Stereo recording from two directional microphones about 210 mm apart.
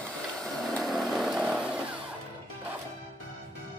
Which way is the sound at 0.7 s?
Centre (ahead or behind).